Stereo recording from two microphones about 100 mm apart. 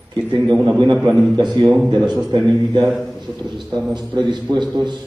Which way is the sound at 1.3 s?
50° right (ahead or behind).